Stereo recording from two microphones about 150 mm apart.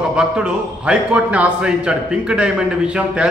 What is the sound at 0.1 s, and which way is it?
A man's voice, 5° right (ahead or behind).